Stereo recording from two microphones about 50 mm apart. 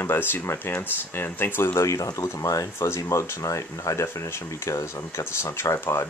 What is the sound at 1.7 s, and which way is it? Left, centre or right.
Speech, left.